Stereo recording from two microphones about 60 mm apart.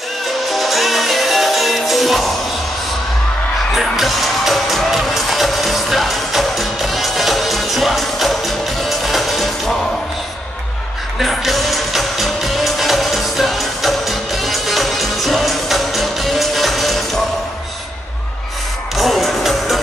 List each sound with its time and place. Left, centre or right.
0.5 s music: centre
3.7 s music: centre
11.1 s music: centre
18.9 s music: centre